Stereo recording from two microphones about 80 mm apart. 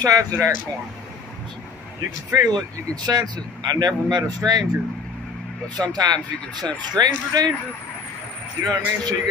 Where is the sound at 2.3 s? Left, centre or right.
Right.